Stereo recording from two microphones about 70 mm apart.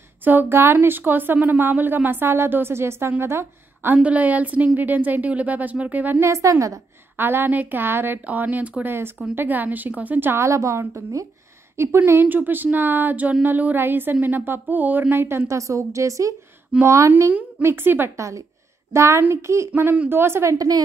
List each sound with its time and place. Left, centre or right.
0.2 s speech: right
3.9 s speech: right
7.2 s speech: right
10.3 s a woman's voice: right
12.1 s a woman's voice: right
18.1 s a woman's voice: right
19.7 s speech: right
20.5 s a woman's voice: right